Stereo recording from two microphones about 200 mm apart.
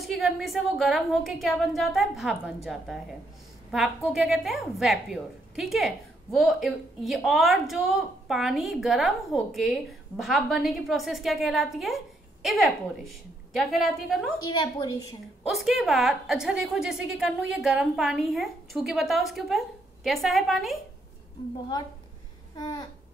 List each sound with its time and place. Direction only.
0.0 s a woman's voice: centre (ahead or behind)
14.6 s a woman's voice: 15° left (ahead or behind)
15.4 s a woman's voice: centre (ahead or behind)
22.6 s a sound: 20° left (ahead or behind)